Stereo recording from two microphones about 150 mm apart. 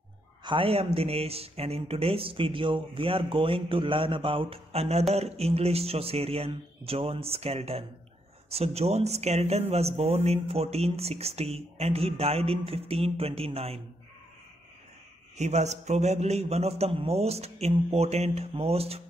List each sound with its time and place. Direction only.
0.4 s speech: 35° right (ahead or behind)
15.3 s speech: 50° right (ahead or behind)